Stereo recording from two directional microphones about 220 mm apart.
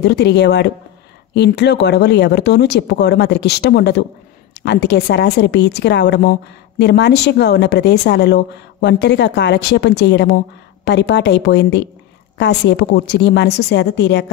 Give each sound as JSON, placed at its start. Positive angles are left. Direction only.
{"t": 0.0, "sound": "a woman's voice", "side_deg": 50}